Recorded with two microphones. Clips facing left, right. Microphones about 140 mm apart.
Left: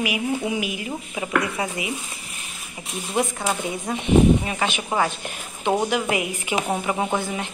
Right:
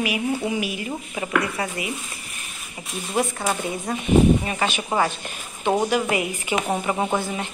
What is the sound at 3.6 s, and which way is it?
A woman's voice, 10° left (ahead or behind).